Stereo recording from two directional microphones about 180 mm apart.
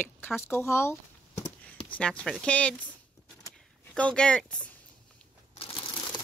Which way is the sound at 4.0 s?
5° left (ahead or behind).